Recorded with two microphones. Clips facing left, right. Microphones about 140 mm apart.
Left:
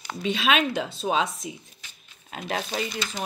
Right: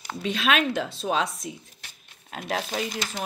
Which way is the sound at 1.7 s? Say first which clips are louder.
Right 1 dB; 65° right (ahead or behind).